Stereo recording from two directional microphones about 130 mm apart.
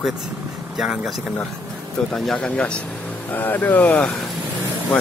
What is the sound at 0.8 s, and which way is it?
Speech, centre (ahead or behind).